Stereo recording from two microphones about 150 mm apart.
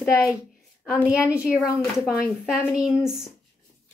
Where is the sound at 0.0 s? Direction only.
20° left (ahead or behind).